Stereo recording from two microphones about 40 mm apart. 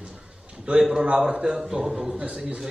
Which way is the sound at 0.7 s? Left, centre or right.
Right.